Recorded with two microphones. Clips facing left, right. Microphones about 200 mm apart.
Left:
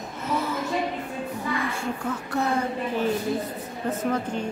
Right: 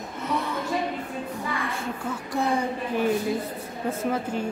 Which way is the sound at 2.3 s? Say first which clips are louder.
Right 1 dB; 15° right (ahead or behind).